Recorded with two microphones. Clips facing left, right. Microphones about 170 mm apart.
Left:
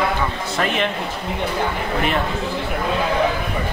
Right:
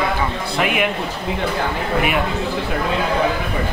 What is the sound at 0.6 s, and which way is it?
Speech, 10° right (ahead or behind).